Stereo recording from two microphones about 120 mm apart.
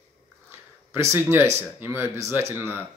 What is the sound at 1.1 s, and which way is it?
Speech, 20° right (ahead or behind).